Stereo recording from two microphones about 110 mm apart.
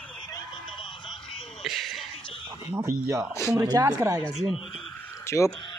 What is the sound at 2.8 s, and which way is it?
Speech, 25° right (ahead or behind).